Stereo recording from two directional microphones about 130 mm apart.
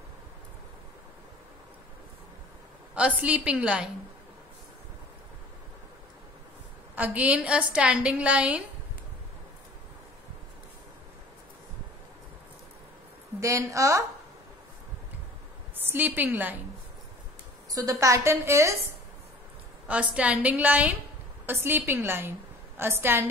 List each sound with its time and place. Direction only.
2.9 s a woman's voice: 10° right (ahead or behind)
7.0 s a woman's voice: 10° right (ahead or behind)
13.4 s a woman's voice: 25° right (ahead or behind)
15.7 s a woman's voice: 15° right (ahead or behind)
17.6 s a woman's voice: 25° right (ahead or behind)
19.9 s a woman's voice: 10° right (ahead or behind)